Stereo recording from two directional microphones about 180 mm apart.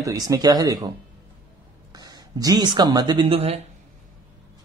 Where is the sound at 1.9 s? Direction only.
25° right (ahead or behind).